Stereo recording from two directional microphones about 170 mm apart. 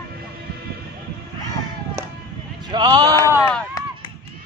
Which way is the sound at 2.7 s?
25° right (ahead or behind).